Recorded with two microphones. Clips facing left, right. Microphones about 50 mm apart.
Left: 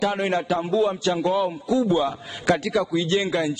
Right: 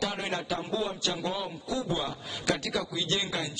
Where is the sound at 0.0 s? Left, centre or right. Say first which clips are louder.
Left 9 dB; left.